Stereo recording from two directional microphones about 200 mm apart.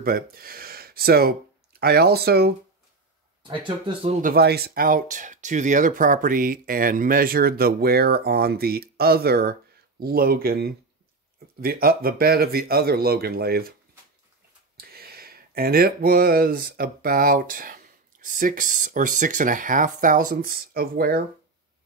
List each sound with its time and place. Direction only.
0.0 s speech: 45° right (ahead or behind)
3.4 s speech: 25° right (ahead or behind)
4.2 s speech: 50° right (ahead or behind)
14.8 s speech: 50° right (ahead or behind)